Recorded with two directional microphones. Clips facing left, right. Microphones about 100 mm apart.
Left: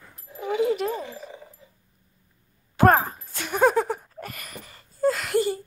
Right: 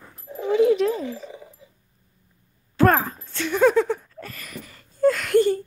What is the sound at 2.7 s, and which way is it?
Speech, 20° left (ahead or behind).